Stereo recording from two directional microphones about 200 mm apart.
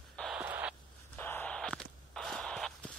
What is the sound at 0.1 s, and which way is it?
Radio, centre (ahead or behind).